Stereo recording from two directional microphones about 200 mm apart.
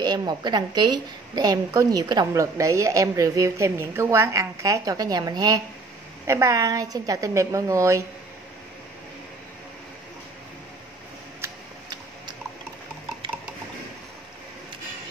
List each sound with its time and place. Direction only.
0.0 s a woman's voice: 20° right (ahead or behind)
11.4 s tick-tock: 20° right (ahead or behind)
13.2 s a sound: 25° right (ahead or behind)